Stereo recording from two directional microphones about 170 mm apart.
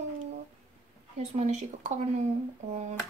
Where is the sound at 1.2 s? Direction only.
40° right (ahead or behind).